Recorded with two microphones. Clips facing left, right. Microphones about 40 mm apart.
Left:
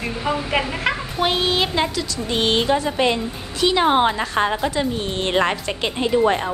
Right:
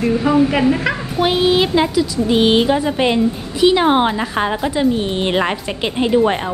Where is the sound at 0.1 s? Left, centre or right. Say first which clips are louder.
Right 7 dB; centre.